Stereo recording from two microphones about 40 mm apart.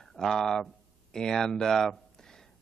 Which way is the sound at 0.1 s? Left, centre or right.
Centre.